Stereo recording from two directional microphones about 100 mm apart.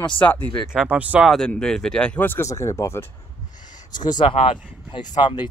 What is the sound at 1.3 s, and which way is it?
Speech, 5° left (ahead or behind).